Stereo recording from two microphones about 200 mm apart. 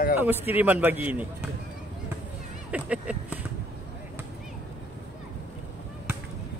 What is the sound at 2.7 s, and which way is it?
Speech, 5° right (ahead or behind).